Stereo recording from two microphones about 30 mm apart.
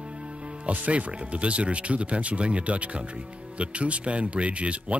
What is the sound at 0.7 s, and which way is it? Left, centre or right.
Speech, right.